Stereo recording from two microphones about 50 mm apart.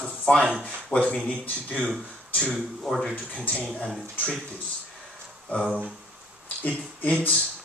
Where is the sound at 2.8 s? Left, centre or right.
Centre.